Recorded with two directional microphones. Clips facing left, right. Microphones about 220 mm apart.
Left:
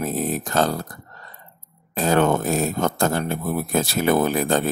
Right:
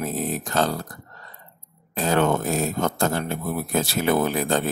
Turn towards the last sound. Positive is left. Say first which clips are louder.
# left 2 dB
turn(degrees=45)  # may be behind; listen again after turning